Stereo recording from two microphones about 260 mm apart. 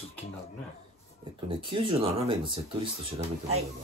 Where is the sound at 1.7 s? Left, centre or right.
Centre.